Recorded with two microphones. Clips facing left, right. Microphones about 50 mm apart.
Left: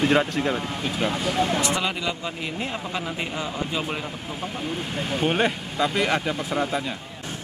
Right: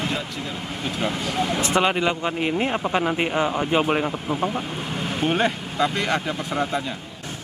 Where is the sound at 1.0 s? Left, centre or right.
Centre.